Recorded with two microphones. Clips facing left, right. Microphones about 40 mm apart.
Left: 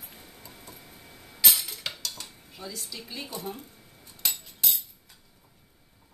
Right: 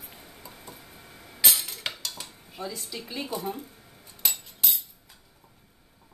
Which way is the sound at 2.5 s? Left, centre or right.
Centre.